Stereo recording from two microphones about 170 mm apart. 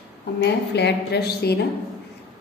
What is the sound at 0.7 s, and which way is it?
Speech, 80° left.